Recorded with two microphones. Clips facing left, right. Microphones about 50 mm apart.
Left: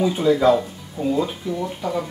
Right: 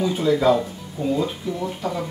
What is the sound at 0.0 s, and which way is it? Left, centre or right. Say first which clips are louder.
Speech: left 2 dB; centre.